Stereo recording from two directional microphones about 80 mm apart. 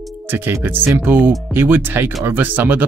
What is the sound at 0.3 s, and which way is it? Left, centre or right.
Speech, right.